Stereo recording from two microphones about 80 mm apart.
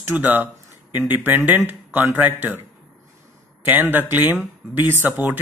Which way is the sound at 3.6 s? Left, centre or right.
Right.